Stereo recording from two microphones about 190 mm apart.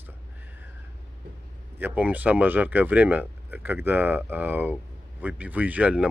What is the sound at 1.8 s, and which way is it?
Speech, 10° right (ahead or behind).